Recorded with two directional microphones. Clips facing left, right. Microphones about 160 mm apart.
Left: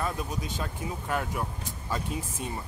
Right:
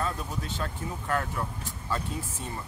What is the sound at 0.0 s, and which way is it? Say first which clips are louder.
Speech: even; 15° left (ahead or behind).